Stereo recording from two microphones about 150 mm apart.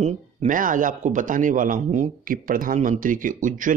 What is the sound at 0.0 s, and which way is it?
A man's voice, 55° right (ahead or behind).